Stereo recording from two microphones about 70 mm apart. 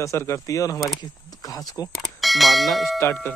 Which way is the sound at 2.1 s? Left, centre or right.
Centre.